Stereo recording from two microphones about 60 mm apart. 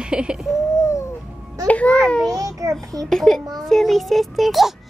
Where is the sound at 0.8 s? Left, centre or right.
Left.